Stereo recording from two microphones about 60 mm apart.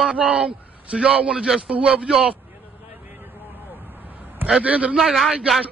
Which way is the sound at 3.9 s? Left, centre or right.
Right.